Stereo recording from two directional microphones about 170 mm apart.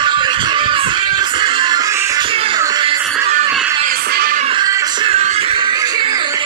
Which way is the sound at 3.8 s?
60° right (ahead or behind).